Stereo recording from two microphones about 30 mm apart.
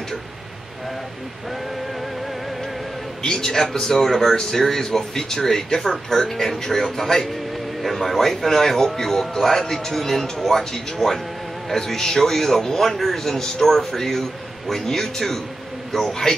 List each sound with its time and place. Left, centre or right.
3.3 s a man's voice: left
7.8 s speech: centre